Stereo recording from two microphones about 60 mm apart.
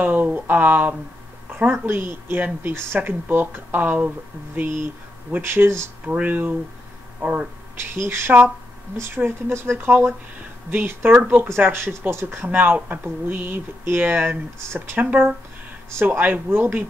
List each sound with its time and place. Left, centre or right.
0.0 s speech: right
5.4 s speech: right
6.0 s speech: right
11.4 s speech: right
12.5 s speech: right
15.9 s speech: right